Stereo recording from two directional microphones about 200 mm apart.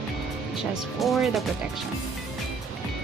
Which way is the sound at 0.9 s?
Centre (ahead or behind).